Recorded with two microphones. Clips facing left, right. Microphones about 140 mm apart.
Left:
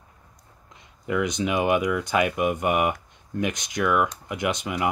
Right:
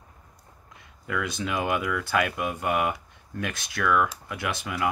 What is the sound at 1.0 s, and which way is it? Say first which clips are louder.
Speech: left 5 dB; 20° left (ahead or behind).